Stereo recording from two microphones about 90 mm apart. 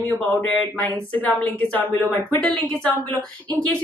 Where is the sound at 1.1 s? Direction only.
15° left (ahead or behind).